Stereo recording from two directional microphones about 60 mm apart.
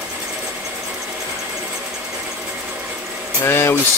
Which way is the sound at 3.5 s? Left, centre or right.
Left.